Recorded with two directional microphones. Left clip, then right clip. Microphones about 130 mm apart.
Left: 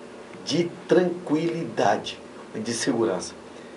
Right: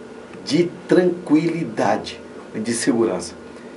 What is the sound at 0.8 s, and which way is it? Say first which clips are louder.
Speech: right 3 dB; 25° right (ahead or behind).